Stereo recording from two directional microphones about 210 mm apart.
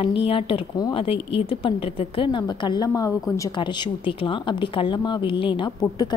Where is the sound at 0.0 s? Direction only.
25° left (ahead or behind).